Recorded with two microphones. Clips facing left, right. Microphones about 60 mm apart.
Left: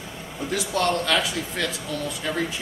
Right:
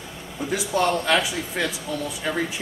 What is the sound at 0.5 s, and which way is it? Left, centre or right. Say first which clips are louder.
Speech: right 1 dB; centre.